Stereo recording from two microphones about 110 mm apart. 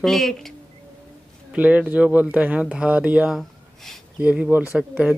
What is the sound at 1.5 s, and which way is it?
Speech, 15° right (ahead or behind).